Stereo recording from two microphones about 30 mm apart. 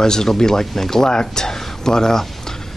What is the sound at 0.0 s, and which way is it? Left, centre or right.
Speech, centre.